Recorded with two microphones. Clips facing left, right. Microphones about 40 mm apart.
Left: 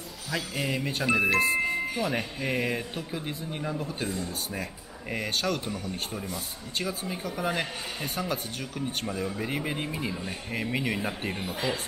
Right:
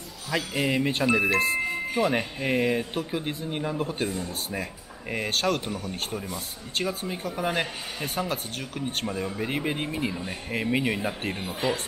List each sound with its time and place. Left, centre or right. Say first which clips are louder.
0.6 s speech: right 6 dB; right
1.0 s speech: left 1 dB; centre
2.0 s speech: right 4 dB; centre
2.6 s speech: right 5 dB; centre
2.9 s speech: right 5 dB; right
5.1 s speech: right 3 dB; centre